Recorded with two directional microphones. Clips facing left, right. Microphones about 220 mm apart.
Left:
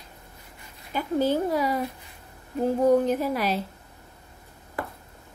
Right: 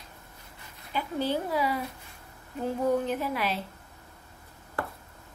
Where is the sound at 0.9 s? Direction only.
45° left (ahead or behind).